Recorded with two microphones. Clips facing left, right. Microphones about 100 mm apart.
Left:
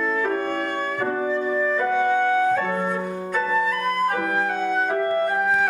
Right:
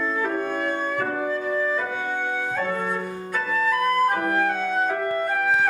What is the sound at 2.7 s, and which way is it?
Music, 5° left (ahead or behind).